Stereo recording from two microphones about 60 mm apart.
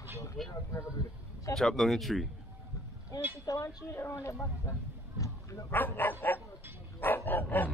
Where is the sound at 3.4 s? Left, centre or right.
Left.